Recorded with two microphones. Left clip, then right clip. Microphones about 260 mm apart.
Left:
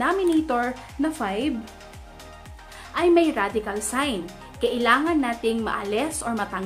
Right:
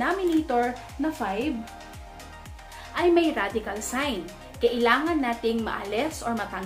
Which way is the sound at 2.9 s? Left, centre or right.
Left.